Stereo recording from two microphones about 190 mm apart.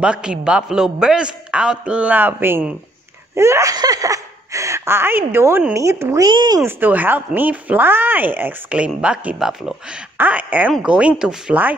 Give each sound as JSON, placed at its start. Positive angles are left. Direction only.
{"t": 0.0, "sound": "a man's voice", "side_deg": -5}
{"t": 6.8, "sound": "a man's voice", "side_deg": -10}